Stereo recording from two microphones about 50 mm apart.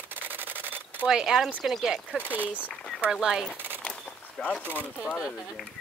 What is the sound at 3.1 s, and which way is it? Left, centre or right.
Speech, centre.